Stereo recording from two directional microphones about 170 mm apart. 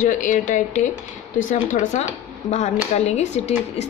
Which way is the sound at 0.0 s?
50° left (ahead or behind).